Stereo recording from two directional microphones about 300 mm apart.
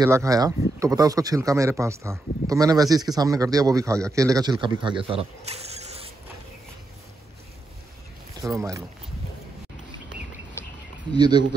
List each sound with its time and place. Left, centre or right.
0.0 s speech: centre
8.5 s speech: centre
10.6 s a sound: centre
11.1 s speech: centre